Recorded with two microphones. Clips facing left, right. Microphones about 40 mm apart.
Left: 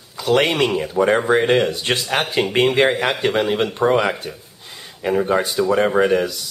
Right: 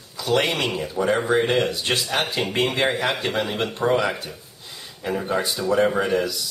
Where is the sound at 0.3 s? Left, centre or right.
Left.